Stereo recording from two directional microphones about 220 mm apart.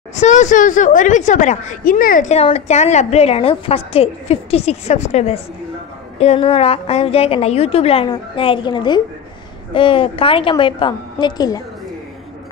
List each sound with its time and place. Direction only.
0.1 s a woman's voice: 30° left (ahead or behind)